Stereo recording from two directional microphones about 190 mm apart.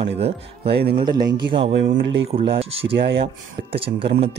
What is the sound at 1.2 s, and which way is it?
Speech, 20° right (ahead or behind).